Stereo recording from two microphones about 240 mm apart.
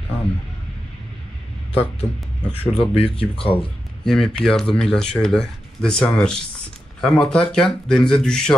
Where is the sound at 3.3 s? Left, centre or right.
Left.